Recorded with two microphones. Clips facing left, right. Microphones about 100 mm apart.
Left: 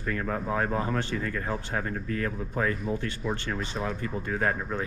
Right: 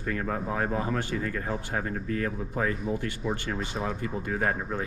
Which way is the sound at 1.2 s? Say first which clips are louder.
Even; 40° right (ahead or behind).